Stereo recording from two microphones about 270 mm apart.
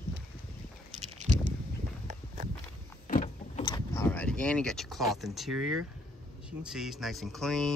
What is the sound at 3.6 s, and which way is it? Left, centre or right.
Speech, centre.